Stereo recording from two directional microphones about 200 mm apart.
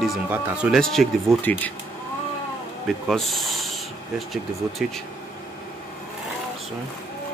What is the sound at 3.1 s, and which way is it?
Speech, centre (ahead or behind).